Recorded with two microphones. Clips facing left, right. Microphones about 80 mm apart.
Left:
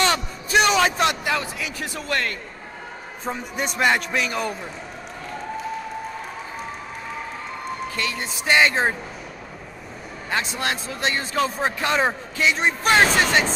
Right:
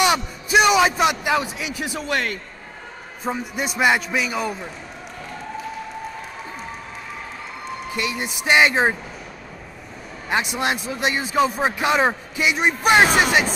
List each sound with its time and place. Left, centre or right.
0.0 s a man's voice: centre
3.3 s a man's voice: centre
7.9 s a man's voice: centre
10.5 s a man's voice: centre